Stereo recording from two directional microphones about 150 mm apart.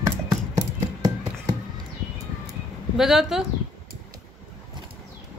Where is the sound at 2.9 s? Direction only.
5° right (ahead or behind).